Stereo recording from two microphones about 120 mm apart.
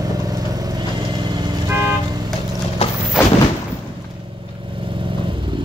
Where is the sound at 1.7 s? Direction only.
20° right (ahead or behind).